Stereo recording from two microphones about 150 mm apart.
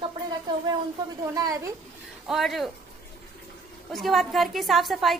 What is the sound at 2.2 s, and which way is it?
Speech, centre (ahead or behind).